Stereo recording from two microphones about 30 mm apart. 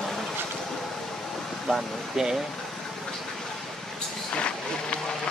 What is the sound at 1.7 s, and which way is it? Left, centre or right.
Speech, centre.